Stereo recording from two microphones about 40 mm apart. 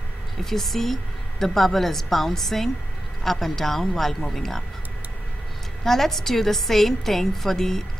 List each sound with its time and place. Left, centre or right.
0.4 s a woman's voice: centre
5.9 s a woman's voice: centre